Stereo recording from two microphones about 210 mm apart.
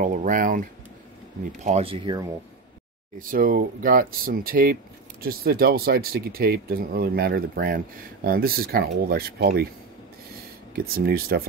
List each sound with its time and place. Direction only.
0.0 s speech: 40° right (ahead or behind)
3.2 s speech: 40° right (ahead or behind)
11.0 s speech: 45° right (ahead or behind)